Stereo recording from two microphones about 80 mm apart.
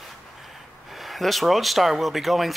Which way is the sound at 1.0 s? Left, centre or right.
Centre.